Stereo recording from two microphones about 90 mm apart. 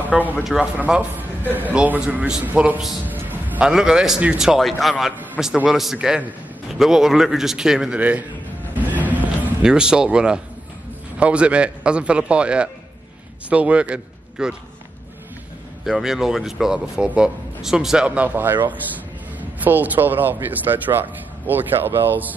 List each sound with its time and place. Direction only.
0.0 s speech: 20° right (ahead or behind)
0.4 s a man's voice: 5° right (ahead or behind)
0.7 s speech: 15° right (ahead or behind)
3.1 s a sound: 20° right (ahead or behind)
3.7 s a man's voice: 5° right (ahead or behind)
4.6 s a man's voice: centre (ahead or behind); by 8.3 s 15° right (ahead or behind)
8.7 s music: 20° right (ahead or behind)
9.6 s a man's voice: 10° right (ahead or behind)
15.8 s a man's voice: 5° right (ahead or behind); by 22.3 s 25° right (ahead or behind)